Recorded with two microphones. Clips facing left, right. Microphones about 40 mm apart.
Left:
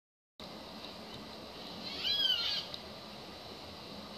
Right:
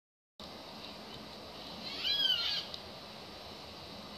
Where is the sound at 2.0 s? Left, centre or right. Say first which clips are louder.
Even; centre.